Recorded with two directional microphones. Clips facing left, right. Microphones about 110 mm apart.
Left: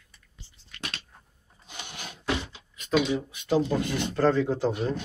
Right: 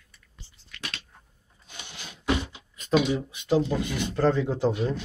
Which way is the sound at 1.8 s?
50° left (ahead or behind).